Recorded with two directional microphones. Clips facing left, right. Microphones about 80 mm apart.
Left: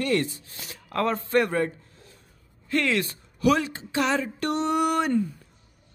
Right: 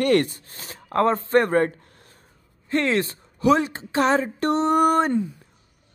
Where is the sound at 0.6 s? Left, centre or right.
Right.